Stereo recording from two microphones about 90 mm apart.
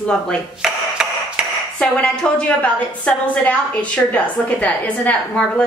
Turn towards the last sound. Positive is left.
turn(degrees=15)  # may be behind; listen again after turning